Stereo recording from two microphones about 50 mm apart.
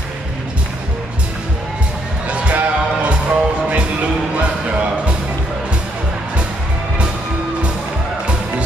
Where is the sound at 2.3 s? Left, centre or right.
Right.